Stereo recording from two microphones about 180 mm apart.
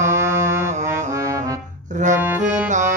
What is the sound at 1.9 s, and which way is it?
Accordion, 45° right (ahead or behind).